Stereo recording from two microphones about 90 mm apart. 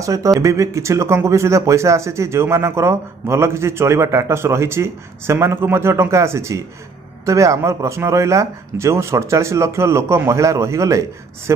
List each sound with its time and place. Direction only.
0.0 s speech: 40° right (ahead or behind)